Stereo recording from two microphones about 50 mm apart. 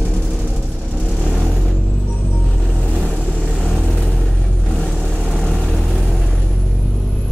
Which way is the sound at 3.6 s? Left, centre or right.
Centre.